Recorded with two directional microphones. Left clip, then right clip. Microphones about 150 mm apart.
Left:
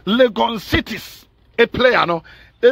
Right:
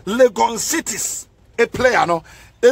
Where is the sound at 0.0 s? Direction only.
25° left (ahead or behind).